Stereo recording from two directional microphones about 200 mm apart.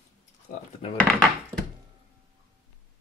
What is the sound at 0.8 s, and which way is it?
Wood, 30° left (ahead or behind).